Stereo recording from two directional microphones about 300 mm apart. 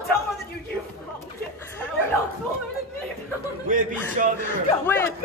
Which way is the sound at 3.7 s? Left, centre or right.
Right.